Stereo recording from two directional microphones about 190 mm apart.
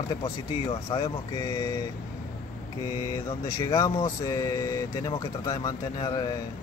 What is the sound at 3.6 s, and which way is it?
Speech, 20° left (ahead or behind).